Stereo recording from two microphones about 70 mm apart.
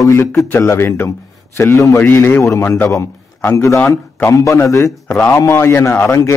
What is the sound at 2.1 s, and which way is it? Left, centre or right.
Speech, left.